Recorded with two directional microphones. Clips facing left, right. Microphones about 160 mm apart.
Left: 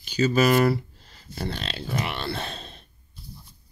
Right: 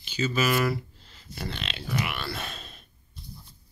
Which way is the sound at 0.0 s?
40° left (ahead or behind).